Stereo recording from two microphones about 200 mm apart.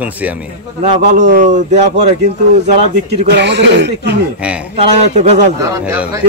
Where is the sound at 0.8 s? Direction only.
40° right (ahead or behind).